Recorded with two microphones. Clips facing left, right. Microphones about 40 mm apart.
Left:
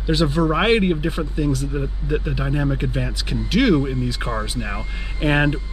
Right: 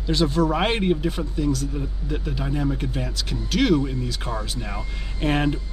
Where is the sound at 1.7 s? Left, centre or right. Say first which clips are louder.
Left 6 dB; left.